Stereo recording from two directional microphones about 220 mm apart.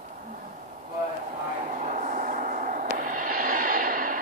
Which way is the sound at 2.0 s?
40° right (ahead or behind).